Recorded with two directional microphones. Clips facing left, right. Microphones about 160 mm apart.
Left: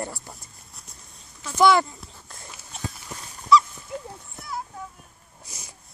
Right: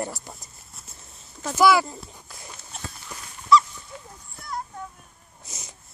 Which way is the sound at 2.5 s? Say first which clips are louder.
Left 4 dB; 5° left (ahead or behind).